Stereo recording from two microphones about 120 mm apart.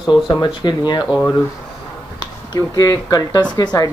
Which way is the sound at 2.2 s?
30° left (ahead or behind).